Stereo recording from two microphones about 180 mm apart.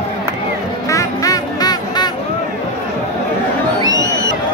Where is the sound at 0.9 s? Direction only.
20° left (ahead or behind).